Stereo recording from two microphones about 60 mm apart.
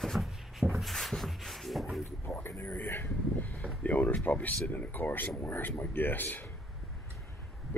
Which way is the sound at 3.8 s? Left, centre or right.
Left.